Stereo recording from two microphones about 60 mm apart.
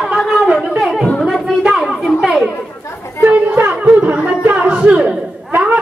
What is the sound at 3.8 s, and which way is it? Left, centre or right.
Music, right.